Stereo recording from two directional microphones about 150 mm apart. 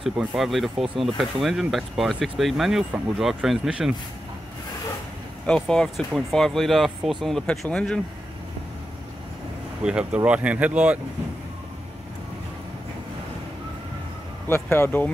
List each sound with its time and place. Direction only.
0.0 s speech: 5° right (ahead or behind)
5.5 s speech: 5° left (ahead or behind)
9.8 s speech: 5° right (ahead or behind)
14.5 s speech: 15° left (ahead or behind)